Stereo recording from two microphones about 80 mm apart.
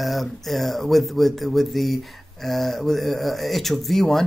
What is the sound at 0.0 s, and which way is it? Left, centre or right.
Speech, centre.